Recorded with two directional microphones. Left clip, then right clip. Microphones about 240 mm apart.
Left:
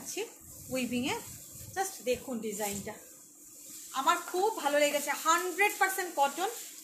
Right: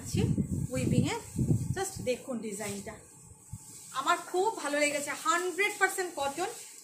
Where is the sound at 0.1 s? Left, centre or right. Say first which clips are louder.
Right 8 dB; centre.